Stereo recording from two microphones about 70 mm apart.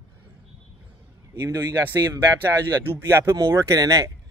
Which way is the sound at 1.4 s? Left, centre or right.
Right.